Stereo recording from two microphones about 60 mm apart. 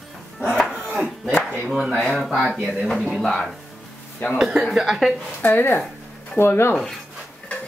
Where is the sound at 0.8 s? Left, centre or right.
Right.